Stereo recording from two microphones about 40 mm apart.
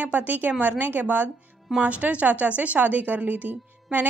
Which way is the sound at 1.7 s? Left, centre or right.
Right.